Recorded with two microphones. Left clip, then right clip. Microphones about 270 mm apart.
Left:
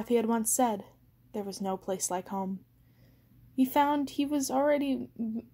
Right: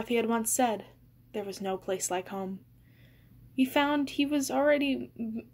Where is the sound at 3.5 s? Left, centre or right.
Left.